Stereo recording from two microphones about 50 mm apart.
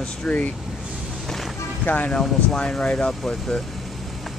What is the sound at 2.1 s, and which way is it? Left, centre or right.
Speech, centre.